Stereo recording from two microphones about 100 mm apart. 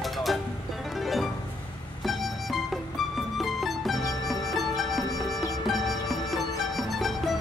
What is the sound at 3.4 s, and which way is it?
Music, centre (ahead or behind).